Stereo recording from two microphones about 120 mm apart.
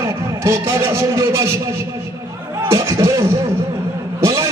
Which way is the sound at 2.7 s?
25° right (ahead or behind).